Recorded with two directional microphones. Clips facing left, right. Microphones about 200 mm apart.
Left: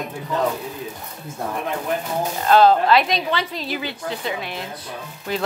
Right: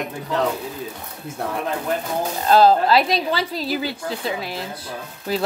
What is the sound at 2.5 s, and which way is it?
Speech, 35° right (ahead or behind).